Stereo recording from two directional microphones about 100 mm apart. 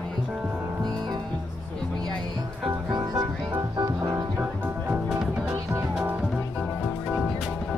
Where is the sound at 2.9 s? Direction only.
35° right (ahead or behind).